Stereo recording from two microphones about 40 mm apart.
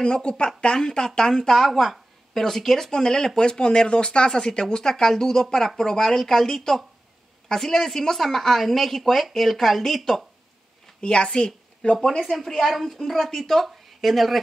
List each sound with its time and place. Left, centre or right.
0.0 s speech: left
1.7 s a sound: centre
2.4 s speech: centre
11.0 s speech: left
12.2 s a woman's voice: centre